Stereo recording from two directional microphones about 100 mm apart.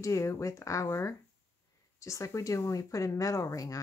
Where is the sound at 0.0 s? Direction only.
30° left (ahead or behind).